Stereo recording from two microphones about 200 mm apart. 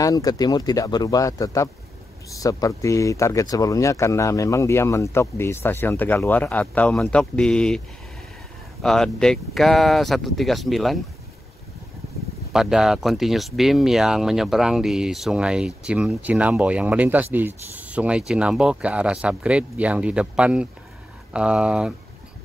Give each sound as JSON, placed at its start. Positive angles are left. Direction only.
{"t": 0.0, "sound": "speech", "side_deg": 20}
{"t": 8.8, "sound": "speech", "side_deg": 5}
{"t": 12.5, "sound": "speech", "side_deg": 0}